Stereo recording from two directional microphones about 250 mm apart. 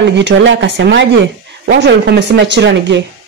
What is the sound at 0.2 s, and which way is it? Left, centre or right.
Speech, right.